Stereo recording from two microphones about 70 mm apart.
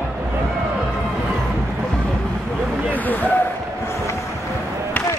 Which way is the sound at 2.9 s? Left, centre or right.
Left.